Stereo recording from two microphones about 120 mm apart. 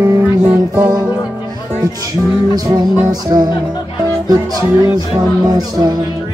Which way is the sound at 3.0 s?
35° right (ahead or behind).